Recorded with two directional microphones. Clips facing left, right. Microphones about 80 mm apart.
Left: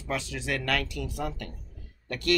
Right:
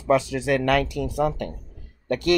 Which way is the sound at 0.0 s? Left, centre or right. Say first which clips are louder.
Right 12 dB; centre.